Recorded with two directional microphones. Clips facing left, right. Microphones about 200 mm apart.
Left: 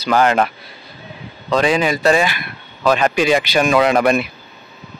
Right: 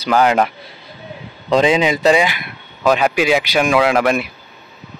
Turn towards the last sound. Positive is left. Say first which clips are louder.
# left 1 dB
turn(degrees=-5)  # may be behind; listen again after turning